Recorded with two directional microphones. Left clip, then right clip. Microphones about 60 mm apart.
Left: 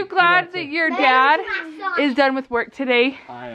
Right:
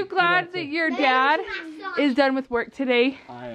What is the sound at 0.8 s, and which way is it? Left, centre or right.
Speech, left.